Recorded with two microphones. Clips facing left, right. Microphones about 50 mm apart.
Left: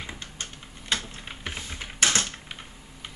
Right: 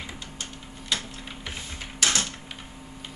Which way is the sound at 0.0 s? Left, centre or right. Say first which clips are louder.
Even; left.